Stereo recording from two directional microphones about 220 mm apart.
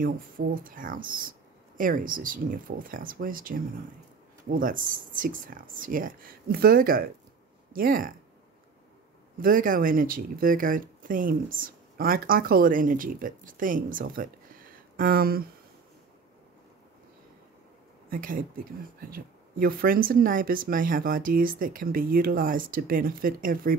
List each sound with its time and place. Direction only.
0.0 s speech: 40° right (ahead or behind)
9.4 s speech: 40° right (ahead or behind)
18.1 s speech: 40° right (ahead or behind)